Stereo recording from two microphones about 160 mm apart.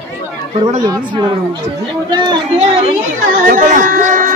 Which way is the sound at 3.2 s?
55° right (ahead or behind).